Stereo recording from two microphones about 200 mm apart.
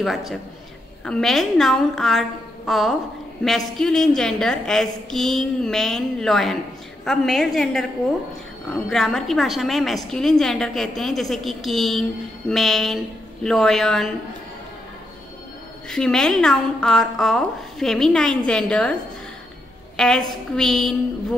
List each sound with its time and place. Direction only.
0.0 s a woman's voice: centre (ahead or behind)
15.9 s a woman's voice: centre (ahead or behind)
20.0 s a woman's voice: centre (ahead or behind)